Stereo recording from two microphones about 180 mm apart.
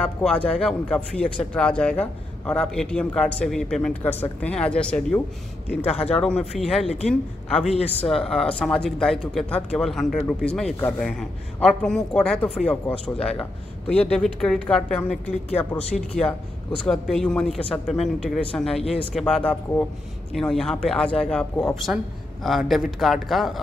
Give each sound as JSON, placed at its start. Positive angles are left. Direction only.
{"t": 0.0, "sound": "a man's voice", "side_deg": 5}
{"t": 7.6, "sound": "speech", "side_deg": 35}
{"t": 8.1, "sound": "a man's voice", "side_deg": 5}